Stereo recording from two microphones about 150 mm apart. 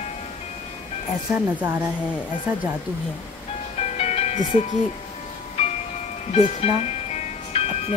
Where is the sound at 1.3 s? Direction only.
5° right (ahead or behind).